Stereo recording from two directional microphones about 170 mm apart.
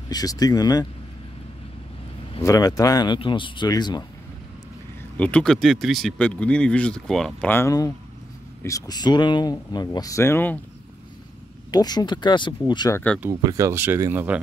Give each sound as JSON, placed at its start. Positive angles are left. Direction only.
{"t": 0.1, "sound": "speech", "side_deg": 20}
{"t": 2.4, "sound": "speech", "side_deg": 20}
{"t": 5.1, "sound": "speech", "side_deg": 5}
{"t": 11.7, "sound": "speech", "side_deg": 25}
{"t": 13.2, "sound": "speech", "side_deg": -20}